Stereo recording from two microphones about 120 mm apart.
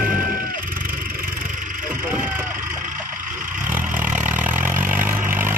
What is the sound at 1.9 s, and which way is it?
Vehicle, 15° right (ahead or behind).